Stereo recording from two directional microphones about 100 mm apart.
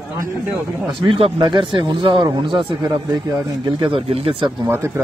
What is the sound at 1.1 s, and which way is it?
A man's voice, 65° right (ahead or behind).